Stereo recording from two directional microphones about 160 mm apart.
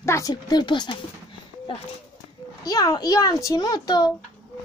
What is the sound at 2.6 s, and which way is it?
A child's voice, 25° left (ahead or behind).